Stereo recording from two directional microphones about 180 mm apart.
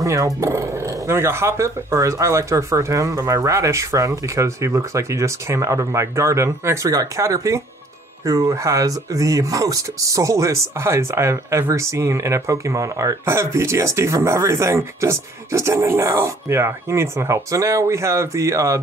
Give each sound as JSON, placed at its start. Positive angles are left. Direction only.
{"t": 0.0, "sound": "speech", "side_deg": -20}